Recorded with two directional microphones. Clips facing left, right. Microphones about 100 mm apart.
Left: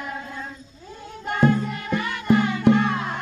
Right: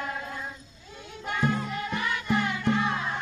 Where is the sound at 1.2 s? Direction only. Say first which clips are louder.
Left 7 dB; 50° left (ahead or behind).